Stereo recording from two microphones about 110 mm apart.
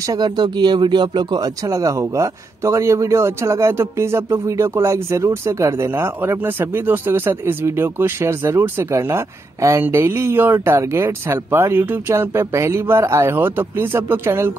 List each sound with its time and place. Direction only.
0.0 s speech: 35° right (ahead or behind)